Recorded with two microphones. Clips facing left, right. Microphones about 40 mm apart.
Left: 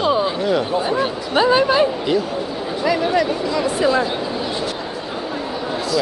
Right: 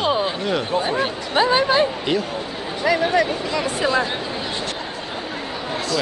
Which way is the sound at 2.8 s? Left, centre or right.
Right.